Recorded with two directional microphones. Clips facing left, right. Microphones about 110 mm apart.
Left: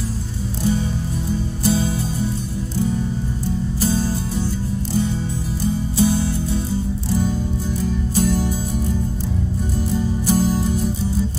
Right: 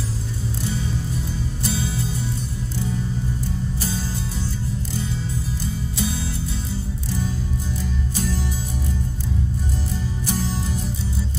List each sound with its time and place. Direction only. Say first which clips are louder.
1.6 s music: left 8 dB; 35° left (ahead or behind)
3.8 s music: left 8 dB; 40° left (ahead or behind)
5.9 s music: left 10 dB; 35° left (ahead or behind)
8.1 s music: left 9 dB; 40° left (ahead or behind)
10.2 s music: left 8 dB; 40° left (ahead or behind)